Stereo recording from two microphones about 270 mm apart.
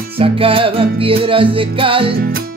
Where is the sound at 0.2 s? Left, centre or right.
Centre.